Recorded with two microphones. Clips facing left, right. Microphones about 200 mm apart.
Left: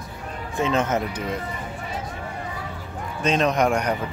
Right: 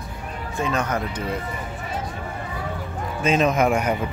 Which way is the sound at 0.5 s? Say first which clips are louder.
Left 2 dB; 20° left (ahead or behind).